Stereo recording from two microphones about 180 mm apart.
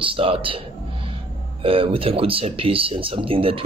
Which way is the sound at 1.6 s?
30° right (ahead or behind).